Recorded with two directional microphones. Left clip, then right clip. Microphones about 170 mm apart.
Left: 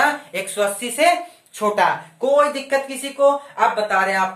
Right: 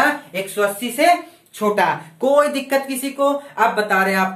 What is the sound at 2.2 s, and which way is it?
Speech, 30° right (ahead or behind).